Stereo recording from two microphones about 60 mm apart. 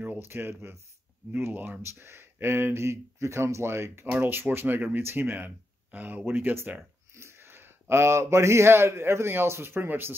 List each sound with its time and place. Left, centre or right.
0.2 s speech: right
4.2 s speech: right